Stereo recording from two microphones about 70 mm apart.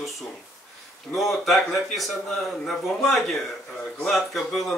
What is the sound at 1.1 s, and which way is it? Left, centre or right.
Speech, centre.